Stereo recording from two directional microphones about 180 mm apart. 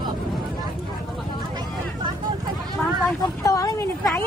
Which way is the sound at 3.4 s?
20° left (ahead or behind).